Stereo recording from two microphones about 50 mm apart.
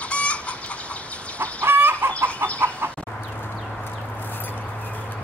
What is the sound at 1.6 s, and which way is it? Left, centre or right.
Chicken, right.